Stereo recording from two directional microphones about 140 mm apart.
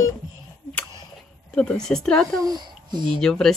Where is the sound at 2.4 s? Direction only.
30° right (ahead or behind).